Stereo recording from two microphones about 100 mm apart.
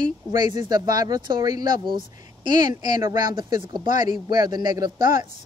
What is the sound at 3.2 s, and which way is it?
Speech, 45° right (ahead or behind).